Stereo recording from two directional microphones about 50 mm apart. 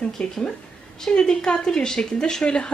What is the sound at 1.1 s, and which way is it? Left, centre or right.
A woman's voice, centre.